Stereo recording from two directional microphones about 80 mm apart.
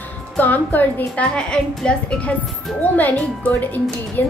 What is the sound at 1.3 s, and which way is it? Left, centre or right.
Speech, centre.